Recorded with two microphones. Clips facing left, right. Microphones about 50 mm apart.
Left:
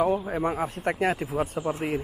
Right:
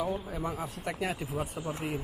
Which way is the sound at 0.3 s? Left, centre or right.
Left.